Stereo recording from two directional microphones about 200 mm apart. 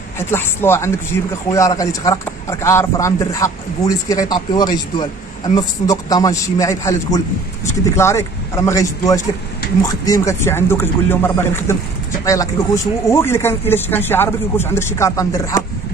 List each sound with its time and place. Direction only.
0.2 s speech: 10° left (ahead or behind)